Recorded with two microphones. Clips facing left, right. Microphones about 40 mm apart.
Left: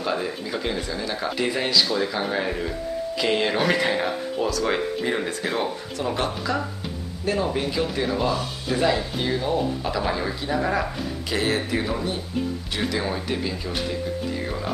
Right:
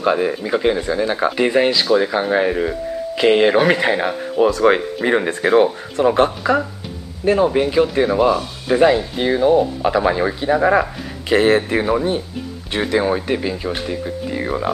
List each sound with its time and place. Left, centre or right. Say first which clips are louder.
0.0 s speech: right 9 dB; right
3.5 s speech: right 7 dB; centre